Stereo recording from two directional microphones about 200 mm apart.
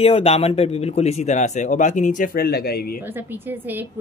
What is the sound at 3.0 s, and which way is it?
Speech, 10° right (ahead or behind).